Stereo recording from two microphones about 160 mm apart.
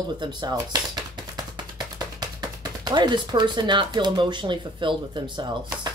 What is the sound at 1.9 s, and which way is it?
Speech, 25° right (ahead or behind).